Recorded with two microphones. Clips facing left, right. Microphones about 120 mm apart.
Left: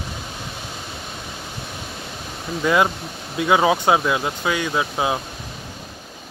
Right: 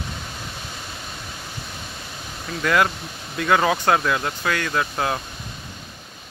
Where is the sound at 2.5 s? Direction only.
20° left (ahead or behind).